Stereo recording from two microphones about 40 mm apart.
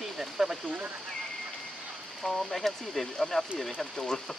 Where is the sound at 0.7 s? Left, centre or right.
Right.